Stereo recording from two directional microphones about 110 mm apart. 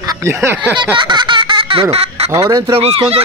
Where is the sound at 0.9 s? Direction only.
45° right (ahead or behind); by 2.3 s 65° right (ahead or behind).